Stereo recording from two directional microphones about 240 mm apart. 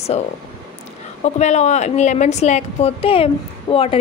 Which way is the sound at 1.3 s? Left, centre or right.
Left.